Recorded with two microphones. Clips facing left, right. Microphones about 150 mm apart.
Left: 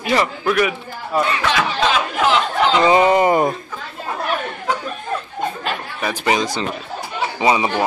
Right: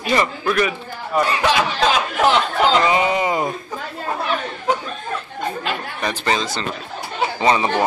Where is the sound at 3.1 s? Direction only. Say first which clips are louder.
Left 5 dB; 50° left (ahead or behind).